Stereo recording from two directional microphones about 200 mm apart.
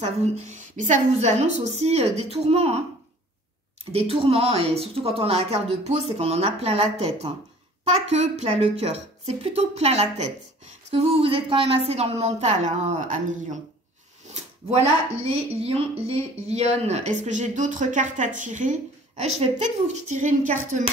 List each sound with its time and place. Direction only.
0.2 s speech: 35° right (ahead or behind)
3.9 s speech: 30° right (ahead or behind)